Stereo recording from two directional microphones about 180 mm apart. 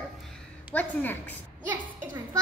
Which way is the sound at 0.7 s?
10° left (ahead or behind).